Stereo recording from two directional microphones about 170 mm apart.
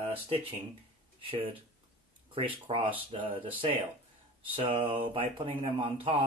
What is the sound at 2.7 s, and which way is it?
Speech, 30° right (ahead or behind).